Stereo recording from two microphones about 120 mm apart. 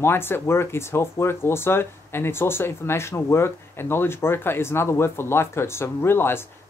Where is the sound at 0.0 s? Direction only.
20° left (ahead or behind).